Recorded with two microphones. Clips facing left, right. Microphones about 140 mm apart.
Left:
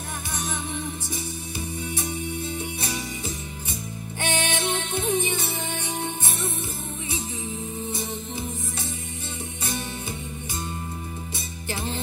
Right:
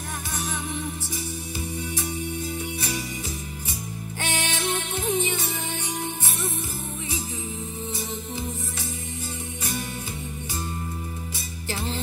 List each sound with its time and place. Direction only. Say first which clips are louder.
4.2 s music: left 3 dB; 20° left (ahead or behind)